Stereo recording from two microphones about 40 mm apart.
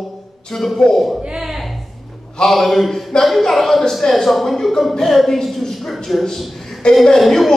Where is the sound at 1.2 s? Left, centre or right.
Centre.